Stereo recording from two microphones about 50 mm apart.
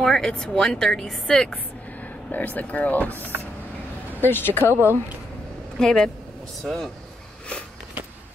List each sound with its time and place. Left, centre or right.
0.0 s speech: centre
2.3 s speech: left
4.2 s speech: left
5.8 s speech: centre